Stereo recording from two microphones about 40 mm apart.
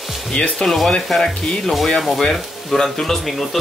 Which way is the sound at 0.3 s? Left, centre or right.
Left.